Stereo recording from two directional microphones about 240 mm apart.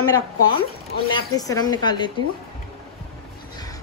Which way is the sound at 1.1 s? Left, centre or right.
Centre.